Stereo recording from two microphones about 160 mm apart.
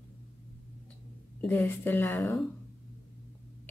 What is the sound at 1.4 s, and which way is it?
Speech, 10° left (ahead or behind).